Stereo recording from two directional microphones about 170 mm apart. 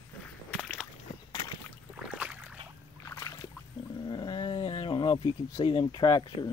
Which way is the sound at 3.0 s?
15° left (ahead or behind).